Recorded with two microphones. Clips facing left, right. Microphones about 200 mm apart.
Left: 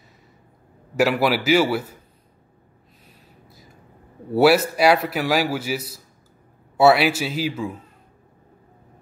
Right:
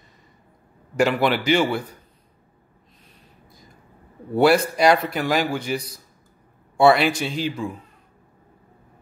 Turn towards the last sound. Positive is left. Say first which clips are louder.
# left 1 dB
turn(degrees=5)  # may be behind; listen again after turning